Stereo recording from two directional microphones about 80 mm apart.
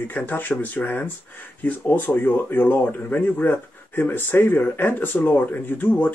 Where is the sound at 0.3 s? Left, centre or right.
Left.